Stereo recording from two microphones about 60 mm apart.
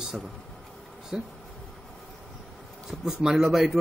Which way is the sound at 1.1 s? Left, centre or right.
Centre.